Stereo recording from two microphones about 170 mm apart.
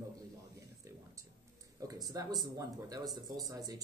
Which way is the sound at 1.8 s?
20° right (ahead or behind).